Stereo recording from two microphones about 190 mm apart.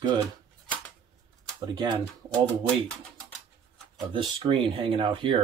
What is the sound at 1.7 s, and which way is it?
Speech, 20° right (ahead or behind).